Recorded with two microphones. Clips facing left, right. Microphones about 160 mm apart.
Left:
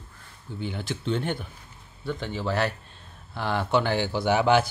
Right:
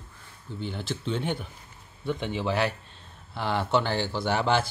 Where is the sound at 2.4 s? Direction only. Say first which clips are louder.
Left 2 dB; 10° right (ahead or behind).